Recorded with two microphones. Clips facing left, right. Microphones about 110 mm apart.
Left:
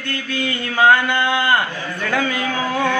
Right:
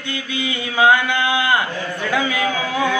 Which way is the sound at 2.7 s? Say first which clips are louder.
Left 1 dB; 5° right (ahead or behind).